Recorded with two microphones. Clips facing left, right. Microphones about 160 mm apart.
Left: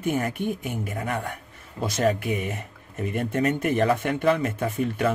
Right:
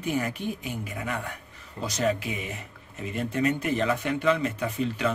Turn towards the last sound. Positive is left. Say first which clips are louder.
# left 3 dB
turn(degrees=50)  # may be behind; listen again after turning